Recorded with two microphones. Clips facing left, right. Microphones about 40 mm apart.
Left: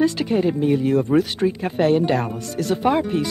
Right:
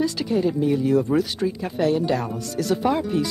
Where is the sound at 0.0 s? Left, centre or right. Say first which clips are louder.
Left 3 dB; left.